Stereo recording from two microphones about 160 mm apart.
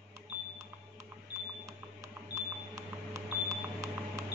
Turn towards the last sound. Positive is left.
turn(degrees=-20)  # may be behind; listen again after turning